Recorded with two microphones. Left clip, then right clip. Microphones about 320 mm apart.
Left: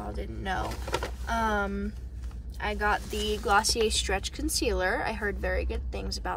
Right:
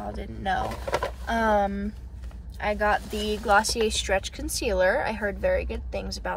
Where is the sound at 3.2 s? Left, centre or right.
Centre.